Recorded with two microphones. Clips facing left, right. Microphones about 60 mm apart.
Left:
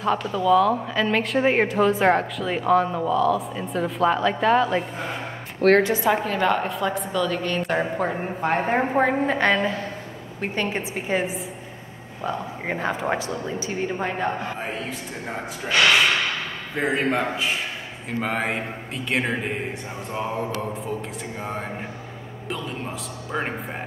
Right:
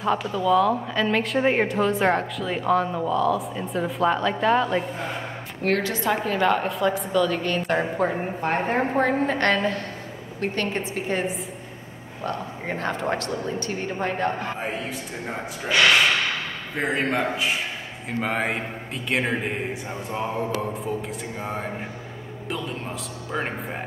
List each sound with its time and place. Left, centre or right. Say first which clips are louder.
0.0 s speech: left 1 dB; centre
5.6 s a woman's voice: left 7 dB; left
5.9 s speech: left 1 dB; centre
16.7 s speech: left 1 dB; centre